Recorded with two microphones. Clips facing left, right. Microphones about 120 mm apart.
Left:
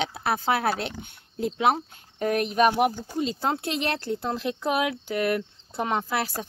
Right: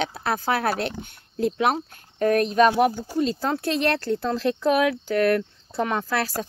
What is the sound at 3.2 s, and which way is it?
Speech, 20° left (ahead or behind).